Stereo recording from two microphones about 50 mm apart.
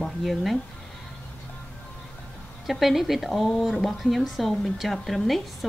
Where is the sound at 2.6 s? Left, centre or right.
Centre.